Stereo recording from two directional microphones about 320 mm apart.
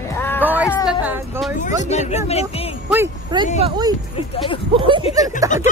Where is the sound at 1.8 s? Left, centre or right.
Left.